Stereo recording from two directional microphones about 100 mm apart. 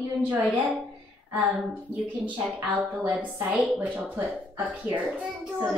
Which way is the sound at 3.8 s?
20° right (ahead or behind).